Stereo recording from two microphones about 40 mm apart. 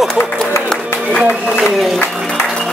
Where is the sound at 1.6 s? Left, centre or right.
Centre.